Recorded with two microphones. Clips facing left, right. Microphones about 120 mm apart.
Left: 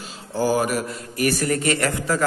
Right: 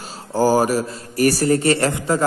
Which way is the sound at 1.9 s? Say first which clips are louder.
Right 3 dB; 25° right (ahead or behind).